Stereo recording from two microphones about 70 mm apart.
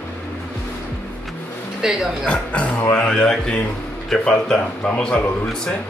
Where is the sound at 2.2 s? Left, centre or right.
Centre.